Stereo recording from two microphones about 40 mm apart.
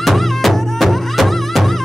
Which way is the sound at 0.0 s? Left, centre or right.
Centre.